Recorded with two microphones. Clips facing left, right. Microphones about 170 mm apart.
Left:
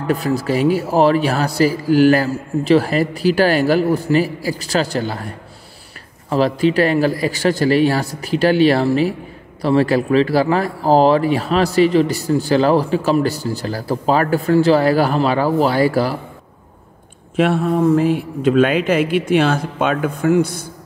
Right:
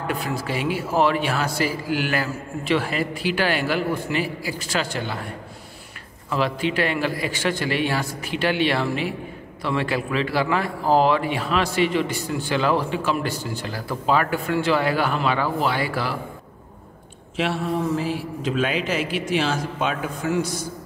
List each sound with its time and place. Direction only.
0.0 s speech: 40° left (ahead or behind)
6.3 s speech: 35° left (ahead or behind)
17.4 s a man's voice: 50° left (ahead or behind)